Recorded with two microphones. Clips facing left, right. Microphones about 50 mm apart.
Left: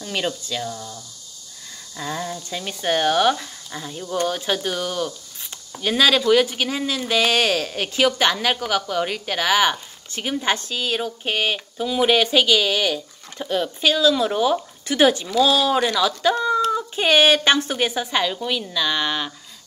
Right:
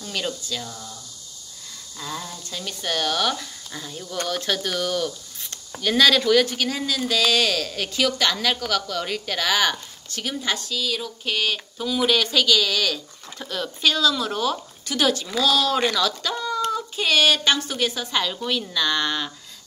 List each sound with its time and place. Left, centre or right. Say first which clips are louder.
0.0 s speech: left 3 dB; left
2.0 s speech: left 5 dB; left
15.2 s speech: left 3 dB; centre
16.7 s speech: left 4 dB; left